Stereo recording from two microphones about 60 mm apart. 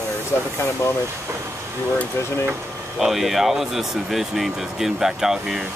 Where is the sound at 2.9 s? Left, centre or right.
Centre.